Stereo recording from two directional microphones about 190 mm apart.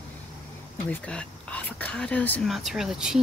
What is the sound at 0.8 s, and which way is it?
Speech, 5° left (ahead or behind).